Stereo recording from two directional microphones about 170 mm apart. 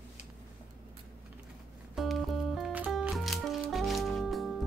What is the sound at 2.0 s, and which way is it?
Music, centre (ahead or behind).